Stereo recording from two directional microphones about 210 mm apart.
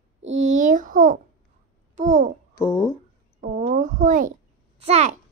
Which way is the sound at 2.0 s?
35° right (ahead or behind).